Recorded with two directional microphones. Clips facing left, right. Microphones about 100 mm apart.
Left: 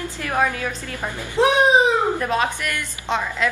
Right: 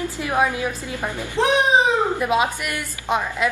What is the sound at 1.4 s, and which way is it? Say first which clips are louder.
Speech: left 2 dB; 15° left (ahead or behind).